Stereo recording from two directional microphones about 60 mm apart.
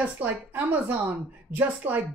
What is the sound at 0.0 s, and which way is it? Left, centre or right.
Speech, right.